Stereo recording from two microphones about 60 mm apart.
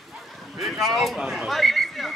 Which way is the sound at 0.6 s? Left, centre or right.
Centre.